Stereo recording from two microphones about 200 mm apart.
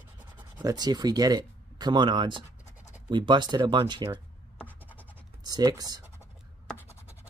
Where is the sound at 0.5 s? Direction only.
20° right (ahead or behind).